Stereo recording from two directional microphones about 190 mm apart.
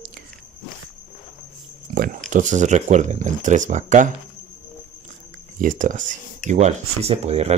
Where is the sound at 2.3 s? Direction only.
40° right (ahead or behind).